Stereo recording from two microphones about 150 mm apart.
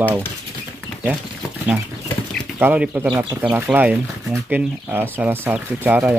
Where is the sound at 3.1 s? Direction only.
30° right (ahead or behind).